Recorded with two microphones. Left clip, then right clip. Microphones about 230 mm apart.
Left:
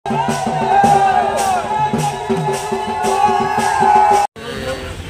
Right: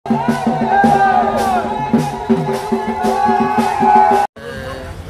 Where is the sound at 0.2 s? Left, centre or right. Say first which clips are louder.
Left 2 dB; left.